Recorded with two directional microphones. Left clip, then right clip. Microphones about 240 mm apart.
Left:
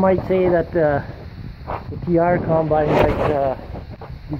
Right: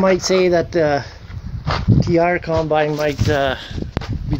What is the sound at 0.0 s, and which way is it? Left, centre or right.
Speech, centre.